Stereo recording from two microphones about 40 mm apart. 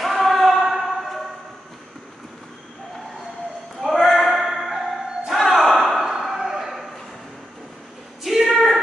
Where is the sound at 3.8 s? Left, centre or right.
Centre.